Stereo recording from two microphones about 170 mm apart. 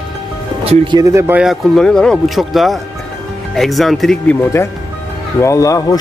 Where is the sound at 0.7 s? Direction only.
25° right (ahead or behind); by 4.4 s centre (ahead or behind).